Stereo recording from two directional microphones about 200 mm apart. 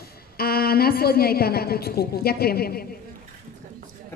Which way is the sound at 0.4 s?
50° left (ahead or behind).